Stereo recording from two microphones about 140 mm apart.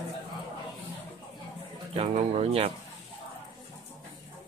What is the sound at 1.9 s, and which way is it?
Speech, 45° right (ahead or behind).